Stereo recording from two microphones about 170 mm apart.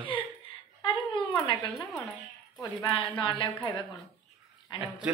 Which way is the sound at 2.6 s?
30° left (ahead or behind).